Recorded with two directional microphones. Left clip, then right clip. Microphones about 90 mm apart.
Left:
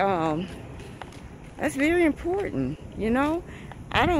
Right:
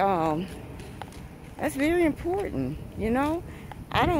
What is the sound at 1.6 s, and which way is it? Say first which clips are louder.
Speech: left 2 dB; 30° left (ahead or behind).